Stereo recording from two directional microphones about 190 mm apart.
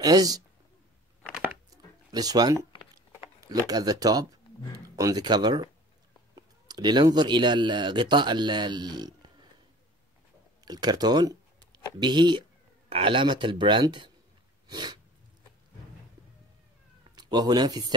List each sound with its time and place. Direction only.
0.0 s speech: 20° right (ahead or behind)
1.2 s a sound: 5° right (ahead or behind)
2.1 s speech: 20° right (ahead or behind)
10.6 s speech: 20° right (ahead or behind)
14.7 s sneeze: 20° right (ahead or behind)
17.1 s speech: 20° right (ahead or behind)